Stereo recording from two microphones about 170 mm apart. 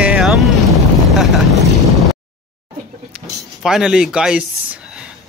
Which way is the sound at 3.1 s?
5° right (ahead or behind).